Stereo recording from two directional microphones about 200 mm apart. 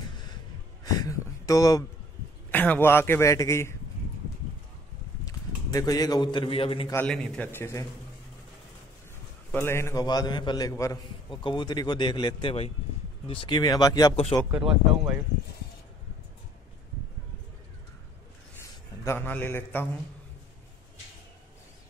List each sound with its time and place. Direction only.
0.1 s gasp: 20° left (ahead or behind)
0.8 s a sound: 15° left (ahead or behind)
2.5 s a man's voice: 10° left (ahead or behind)
5.2 s a man's voice: 15° left (ahead or behind)
6.9 s a man's voice: 5° left (ahead or behind)
9.5 s a man's voice: 10° left (ahead or behind)
14.1 s a man's voice: 30° left (ahead or behind)
14.5 s speech: 5° right (ahead or behind)
18.6 s a man's voice: 10° left (ahead or behind)